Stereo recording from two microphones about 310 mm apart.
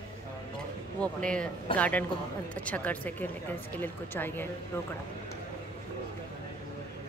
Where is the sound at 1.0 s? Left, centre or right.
Centre.